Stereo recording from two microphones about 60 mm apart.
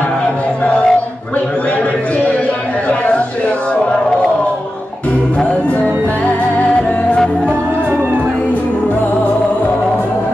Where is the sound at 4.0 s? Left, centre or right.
Centre.